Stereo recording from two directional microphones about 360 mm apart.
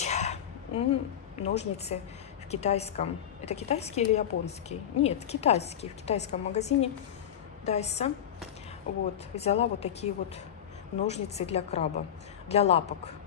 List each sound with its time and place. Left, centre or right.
0.0 s a sound: centre
1.4 s a woman's voice: centre
9.3 s a woman's voice: centre